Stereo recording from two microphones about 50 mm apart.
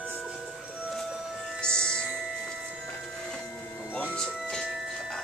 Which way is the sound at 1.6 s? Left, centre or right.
Centre.